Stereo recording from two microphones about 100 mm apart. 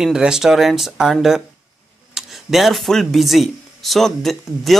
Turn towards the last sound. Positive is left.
turn(degrees=0)  # may be behind; listen again after turning